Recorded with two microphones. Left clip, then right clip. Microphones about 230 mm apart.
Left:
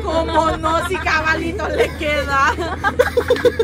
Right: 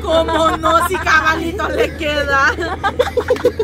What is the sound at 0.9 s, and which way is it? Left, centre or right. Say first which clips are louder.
Speech: right 4 dB; right.